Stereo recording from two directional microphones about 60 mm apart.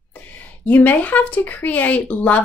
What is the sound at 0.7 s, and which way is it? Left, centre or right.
A woman's voice, left.